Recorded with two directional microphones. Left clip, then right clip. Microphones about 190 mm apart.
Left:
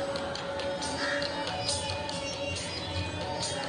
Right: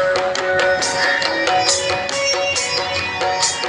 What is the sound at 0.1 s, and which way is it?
Music, 55° right (ahead or behind).